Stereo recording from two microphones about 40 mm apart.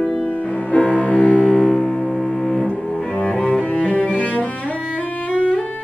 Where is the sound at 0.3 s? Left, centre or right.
Left.